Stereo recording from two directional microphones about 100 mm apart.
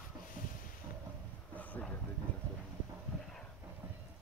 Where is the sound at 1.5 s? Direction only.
15° left (ahead or behind).